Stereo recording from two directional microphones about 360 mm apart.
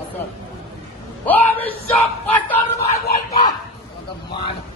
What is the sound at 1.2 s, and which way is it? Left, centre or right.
Speech, centre.